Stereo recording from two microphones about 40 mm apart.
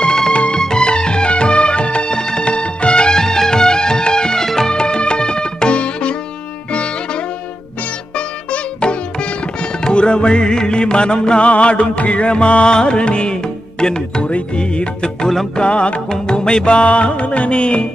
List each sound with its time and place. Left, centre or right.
0.0 s music: centre
0.3 s music: left
9.8 s music: left